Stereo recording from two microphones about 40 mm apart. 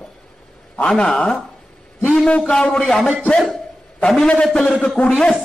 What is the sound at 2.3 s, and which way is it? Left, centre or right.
Speech, left.